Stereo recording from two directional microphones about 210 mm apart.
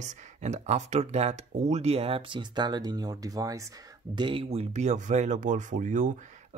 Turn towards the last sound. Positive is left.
turn(degrees=-35)  # may be behind; listen again after turning